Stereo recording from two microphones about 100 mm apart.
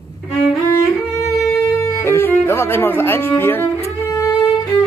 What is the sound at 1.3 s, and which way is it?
Speech, 30° left (ahead or behind).